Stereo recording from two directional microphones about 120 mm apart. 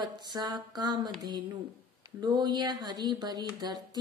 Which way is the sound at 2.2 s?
35° right (ahead or behind).